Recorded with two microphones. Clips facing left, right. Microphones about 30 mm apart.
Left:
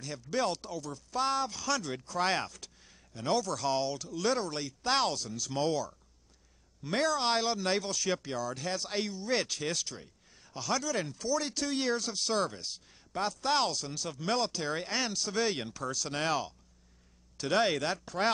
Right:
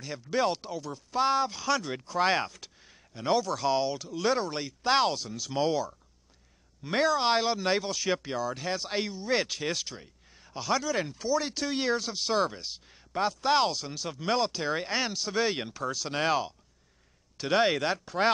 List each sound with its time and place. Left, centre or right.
0.0 s speech: centre